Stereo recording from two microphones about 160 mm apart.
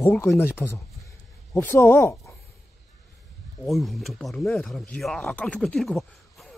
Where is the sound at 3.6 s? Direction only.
Centre (ahead or behind).